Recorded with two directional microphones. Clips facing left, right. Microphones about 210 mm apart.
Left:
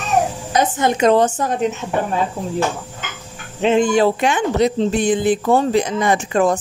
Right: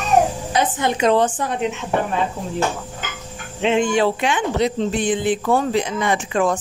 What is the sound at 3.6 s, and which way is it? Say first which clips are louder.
Speech: left 3 dB; 40° left (ahead or behind).